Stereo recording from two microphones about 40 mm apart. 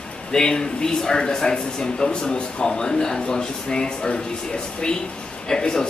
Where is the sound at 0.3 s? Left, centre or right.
Centre.